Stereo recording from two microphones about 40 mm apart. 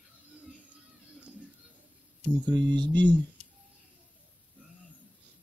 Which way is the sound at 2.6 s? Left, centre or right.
Left.